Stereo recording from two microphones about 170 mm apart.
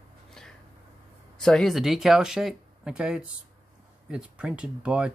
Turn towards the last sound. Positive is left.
turn(degrees=-5)  # may be behind; listen again after turning